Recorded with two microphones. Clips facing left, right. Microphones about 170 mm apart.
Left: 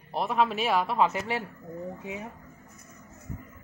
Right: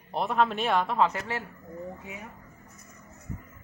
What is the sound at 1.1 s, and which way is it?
Speech, 20° left (ahead or behind).